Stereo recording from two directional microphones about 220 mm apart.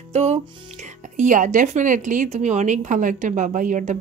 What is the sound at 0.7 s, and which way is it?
Speech, 30° right (ahead or behind).